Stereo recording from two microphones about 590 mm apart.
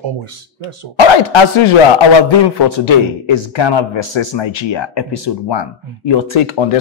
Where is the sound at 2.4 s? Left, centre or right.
Left.